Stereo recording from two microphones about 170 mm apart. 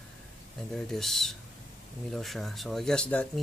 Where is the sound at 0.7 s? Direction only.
Centre (ahead or behind).